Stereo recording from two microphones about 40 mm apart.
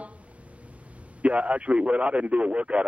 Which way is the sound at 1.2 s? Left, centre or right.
Right.